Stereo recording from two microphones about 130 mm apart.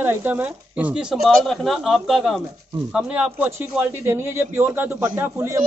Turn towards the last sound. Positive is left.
turn(degrees=-25)  # may be behind; listen again after turning